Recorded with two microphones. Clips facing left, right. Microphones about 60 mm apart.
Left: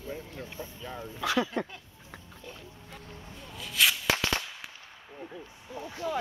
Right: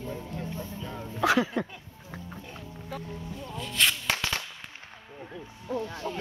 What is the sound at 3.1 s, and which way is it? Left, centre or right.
Firecracker, centre.